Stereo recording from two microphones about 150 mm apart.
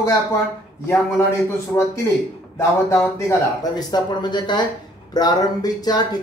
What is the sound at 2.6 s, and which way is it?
Speech, 20° left (ahead or behind).